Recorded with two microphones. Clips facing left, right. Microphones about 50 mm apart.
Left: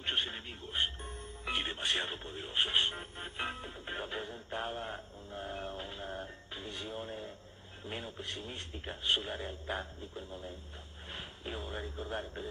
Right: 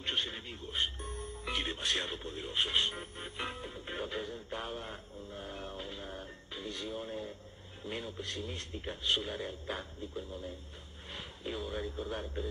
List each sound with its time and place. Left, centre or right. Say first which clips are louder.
0.0 s speech: left 1 dB; left